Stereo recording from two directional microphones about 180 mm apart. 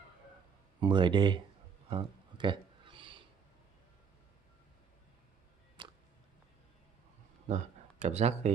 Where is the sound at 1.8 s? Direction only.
30° right (ahead or behind).